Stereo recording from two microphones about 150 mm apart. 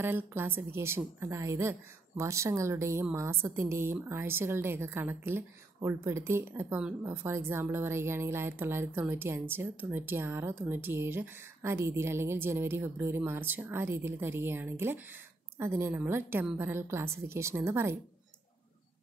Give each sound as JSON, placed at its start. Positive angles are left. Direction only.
{"t": 0.0, "sound": "a woman's voice", "side_deg": -15}